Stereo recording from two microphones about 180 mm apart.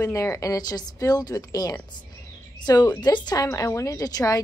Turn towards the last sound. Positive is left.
turn(degrees=20)  # may be behind; listen again after turning